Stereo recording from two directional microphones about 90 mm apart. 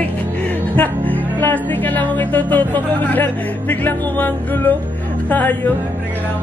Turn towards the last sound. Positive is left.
turn(degrees=20)  # may be behind; listen again after turning